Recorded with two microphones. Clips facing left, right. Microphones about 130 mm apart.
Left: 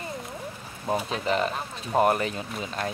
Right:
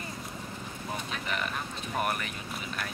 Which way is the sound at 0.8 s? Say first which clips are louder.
Left 10 dB; 35° left (ahead or behind).